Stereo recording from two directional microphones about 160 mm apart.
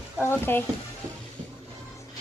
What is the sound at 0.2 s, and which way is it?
Speech, 15° left (ahead or behind).